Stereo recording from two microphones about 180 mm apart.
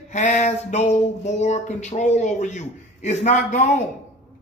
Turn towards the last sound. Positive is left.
turn(degrees=40)  # may be behind; listen again after turning